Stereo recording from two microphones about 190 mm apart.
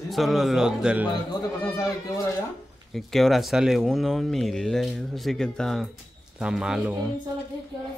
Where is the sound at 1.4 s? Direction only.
20° left (ahead or behind).